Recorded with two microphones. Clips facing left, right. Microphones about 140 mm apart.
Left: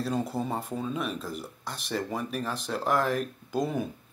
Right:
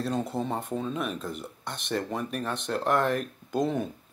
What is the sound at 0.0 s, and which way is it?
Speech, centre (ahead or behind).